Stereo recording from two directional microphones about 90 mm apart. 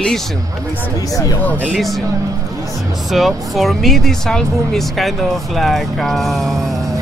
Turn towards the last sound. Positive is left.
turn(degrees=0)  # may be behind; listen again after turning